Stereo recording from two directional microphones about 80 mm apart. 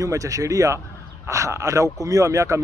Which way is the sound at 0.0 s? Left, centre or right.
Right.